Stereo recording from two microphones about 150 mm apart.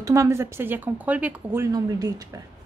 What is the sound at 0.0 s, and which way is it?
A woman's voice, 20° right (ahead or behind).